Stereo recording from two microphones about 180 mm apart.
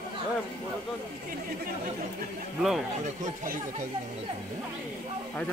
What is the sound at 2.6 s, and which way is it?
Speech, centre (ahead or behind).